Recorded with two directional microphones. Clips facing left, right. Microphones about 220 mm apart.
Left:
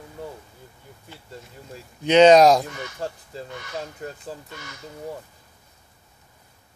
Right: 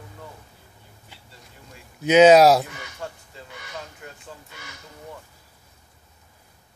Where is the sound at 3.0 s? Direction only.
35° left (ahead or behind).